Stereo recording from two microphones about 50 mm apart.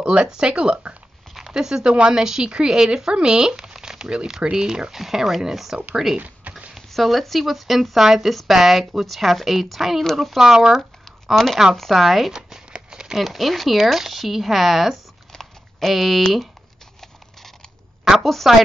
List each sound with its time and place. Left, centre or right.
0.0 s speech: centre
1.3 s speech: centre
6.1 s a sound: right
6.9 s speech: centre
11.3 s speech: centre
13.2 s speech: centre
15.3 s a sound: centre
16.2 s speech: centre
17.0 s a sound: centre
18.2 s speech: centre